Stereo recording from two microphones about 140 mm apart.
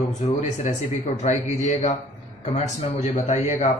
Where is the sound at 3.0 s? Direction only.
60° left (ahead or behind).